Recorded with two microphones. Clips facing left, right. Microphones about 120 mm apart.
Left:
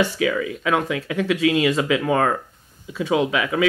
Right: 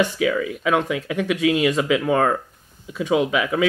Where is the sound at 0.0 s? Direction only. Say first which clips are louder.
Right 1 dB; 5° right (ahead or behind).